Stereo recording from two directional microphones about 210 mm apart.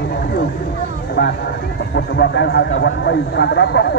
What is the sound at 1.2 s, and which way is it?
A man's voice, 60° left (ahead or behind).